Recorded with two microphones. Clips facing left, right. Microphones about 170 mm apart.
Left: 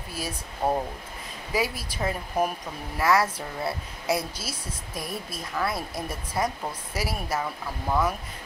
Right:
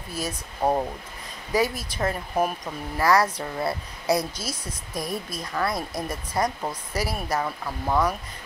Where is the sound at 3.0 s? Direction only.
5° left (ahead or behind).